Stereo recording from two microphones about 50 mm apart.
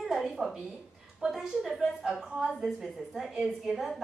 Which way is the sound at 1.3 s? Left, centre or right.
Centre.